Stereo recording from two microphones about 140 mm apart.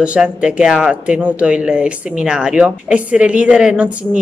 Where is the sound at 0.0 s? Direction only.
10° right (ahead or behind).